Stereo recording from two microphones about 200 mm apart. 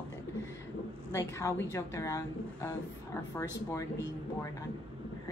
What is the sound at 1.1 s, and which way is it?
A woman's voice, 15° left (ahead or behind).